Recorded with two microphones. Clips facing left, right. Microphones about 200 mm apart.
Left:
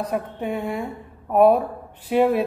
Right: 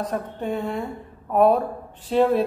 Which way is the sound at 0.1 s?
10° left (ahead or behind).